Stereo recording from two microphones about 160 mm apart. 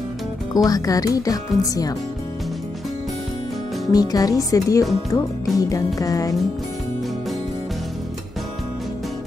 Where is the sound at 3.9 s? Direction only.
25° left (ahead or behind).